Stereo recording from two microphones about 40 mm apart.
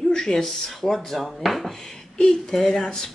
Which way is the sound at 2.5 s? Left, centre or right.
Centre.